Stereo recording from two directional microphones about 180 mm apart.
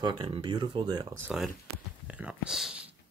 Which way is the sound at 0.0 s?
25° right (ahead or behind).